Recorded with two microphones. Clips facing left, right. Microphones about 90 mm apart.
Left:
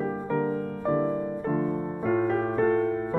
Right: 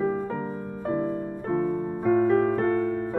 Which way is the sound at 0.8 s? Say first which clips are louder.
Left 1 dB; 25° left (ahead or behind).